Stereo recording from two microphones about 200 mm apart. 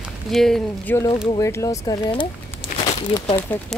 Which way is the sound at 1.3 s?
15° left (ahead or behind).